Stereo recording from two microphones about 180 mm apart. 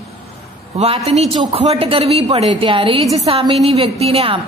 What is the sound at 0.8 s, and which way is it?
A woman's voice, 35° right (ahead or behind).